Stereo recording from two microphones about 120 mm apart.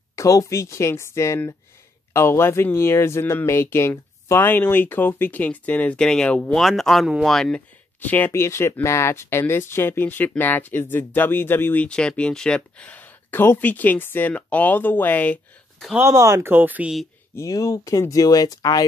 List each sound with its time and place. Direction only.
0.1 s speech: 25° left (ahead or behind); by 7.6 s centre (ahead or behind)
8.0 s speech: 15° left (ahead or behind)
16.0 s speech: 25° right (ahead or behind)
17.4 s speech: 30° left (ahead or behind)